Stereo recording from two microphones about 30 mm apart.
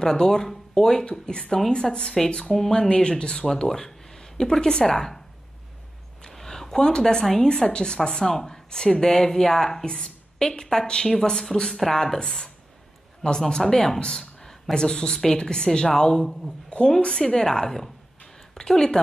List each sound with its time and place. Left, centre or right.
0.0 s speech: centre
3.5 s speech: centre
6.3 s a sound: centre
7.0 s speech: centre
7.4 s speech: left; by 9.8 s centre
9.8 s a woman's voice: left
18.5 s a woman's voice: left